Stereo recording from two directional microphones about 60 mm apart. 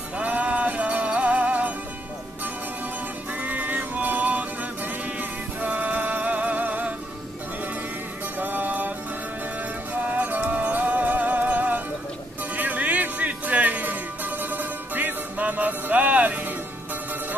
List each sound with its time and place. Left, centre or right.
0.2 s music: right
3.3 s music: right
8.4 s music: right